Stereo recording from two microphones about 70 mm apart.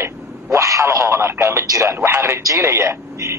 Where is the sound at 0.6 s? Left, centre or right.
Right.